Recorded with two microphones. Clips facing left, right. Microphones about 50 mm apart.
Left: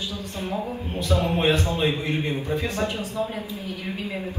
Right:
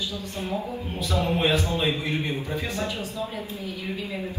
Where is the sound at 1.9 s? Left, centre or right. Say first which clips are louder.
Left 1 dB; left.